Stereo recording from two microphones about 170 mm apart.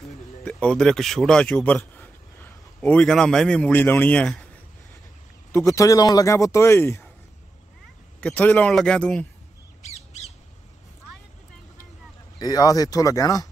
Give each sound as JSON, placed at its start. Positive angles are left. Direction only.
{"t": 0.5, "sound": "speech", "side_deg": 5}
{"t": 5.7, "sound": "speech", "side_deg": 20}
{"t": 8.2, "sound": "a man's voice", "side_deg": 10}
{"t": 9.8, "sound": "squawk", "side_deg": 40}
{"t": 12.4, "sound": "speech", "side_deg": 20}